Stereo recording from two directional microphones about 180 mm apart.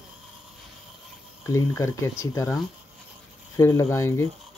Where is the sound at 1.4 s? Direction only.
15° left (ahead or behind).